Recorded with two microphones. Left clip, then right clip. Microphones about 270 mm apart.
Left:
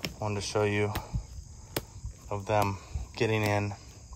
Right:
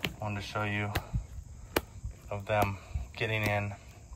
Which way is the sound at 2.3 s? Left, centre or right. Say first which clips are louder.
Left 2 dB; centre.